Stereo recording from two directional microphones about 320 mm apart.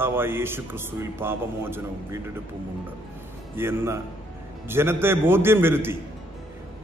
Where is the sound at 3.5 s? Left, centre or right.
Centre.